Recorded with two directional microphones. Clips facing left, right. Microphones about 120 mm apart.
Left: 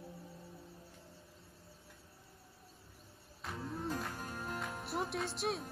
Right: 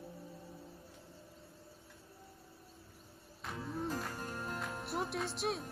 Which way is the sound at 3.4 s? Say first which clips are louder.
Right 1 dB; centre (ahead or behind).